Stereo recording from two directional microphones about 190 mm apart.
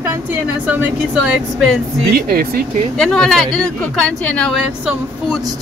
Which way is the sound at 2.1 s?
50° right (ahead or behind).